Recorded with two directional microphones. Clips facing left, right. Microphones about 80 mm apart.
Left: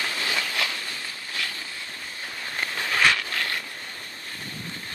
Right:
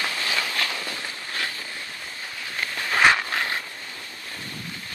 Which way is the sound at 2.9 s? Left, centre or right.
Right.